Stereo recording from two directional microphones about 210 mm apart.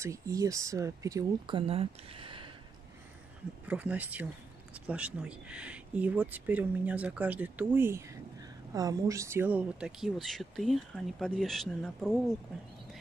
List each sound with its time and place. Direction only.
0.0 s speech: 15° right (ahead or behind)
1.7 s speech: 25° right (ahead or behind)
3.6 s speech: 5° right (ahead or behind)